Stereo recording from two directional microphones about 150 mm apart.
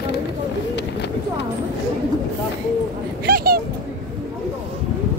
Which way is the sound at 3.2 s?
90° right.